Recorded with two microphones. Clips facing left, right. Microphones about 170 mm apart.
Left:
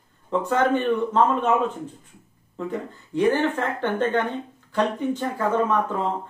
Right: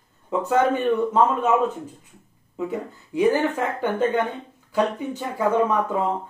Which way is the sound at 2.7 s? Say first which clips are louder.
Even; 10° right (ahead or behind).